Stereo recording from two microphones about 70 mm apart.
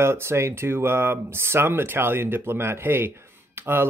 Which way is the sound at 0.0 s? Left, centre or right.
Right.